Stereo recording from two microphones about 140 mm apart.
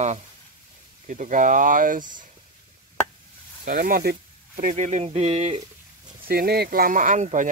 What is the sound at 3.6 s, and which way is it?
Speech, 85° right.